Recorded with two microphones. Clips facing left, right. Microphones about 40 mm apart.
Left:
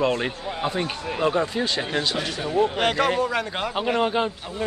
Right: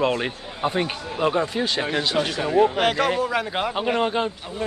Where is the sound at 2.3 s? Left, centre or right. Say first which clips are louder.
Right 4 dB; right.